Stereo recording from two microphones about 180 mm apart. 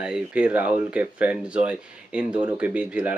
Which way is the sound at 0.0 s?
5° right (ahead or behind).